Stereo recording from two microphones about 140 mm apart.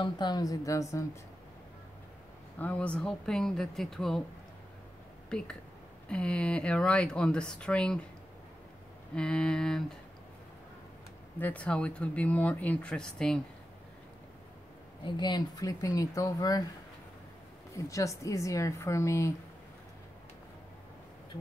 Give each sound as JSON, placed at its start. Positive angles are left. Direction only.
{"t": 0.0, "sound": "speech", "side_deg": 30}
{"t": 2.6, "sound": "speech", "side_deg": 10}
{"t": 5.3, "sound": "speech", "side_deg": 5}
{"t": 9.1, "sound": "speech", "side_deg": 5}
{"t": 11.3, "sound": "speech", "side_deg": 10}
{"t": 15.0, "sound": "speech", "side_deg": 30}
{"t": 17.7, "sound": "speech", "side_deg": 25}